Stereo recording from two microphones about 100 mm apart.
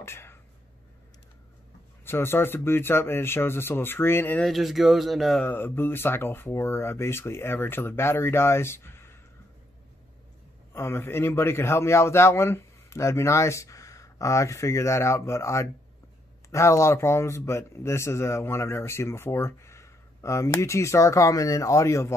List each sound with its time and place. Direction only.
0.0 s a sound: 25° left (ahead or behind)
2.0 s a man's voice: 25° left (ahead or behind)
4.4 s speech: centre (ahead or behind)
5.4 s a man's voice: 20° left (ahead or behind)
10.7 s a man's voice: 25° left (ahead or behind)